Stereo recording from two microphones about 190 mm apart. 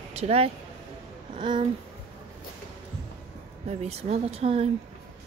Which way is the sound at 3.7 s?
35° right (ahead or behind).